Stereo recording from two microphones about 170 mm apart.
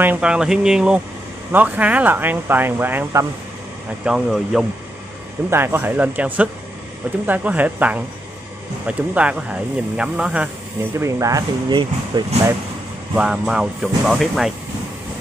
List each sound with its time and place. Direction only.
0.0 s speech: 10° right (ahead or behind)
4.0 s speech: 5° right (ahead or behind)
5.5 s speech: 15° right (ahead or behind)
11.0 s speech: 20° right (ahead or behind)
13.1 s speech: 5° right (ahead or behind)